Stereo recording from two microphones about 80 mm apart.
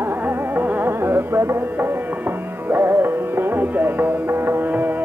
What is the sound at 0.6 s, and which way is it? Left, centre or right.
Music, right.